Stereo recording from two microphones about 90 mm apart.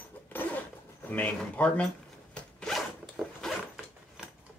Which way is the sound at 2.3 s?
5° left (ahead or behind).